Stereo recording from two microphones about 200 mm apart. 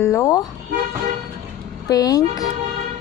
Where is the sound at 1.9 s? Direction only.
20° left (ahead or behind).